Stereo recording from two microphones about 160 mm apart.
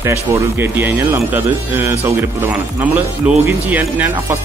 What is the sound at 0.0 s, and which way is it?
Speech, 15° right (ahead or behind).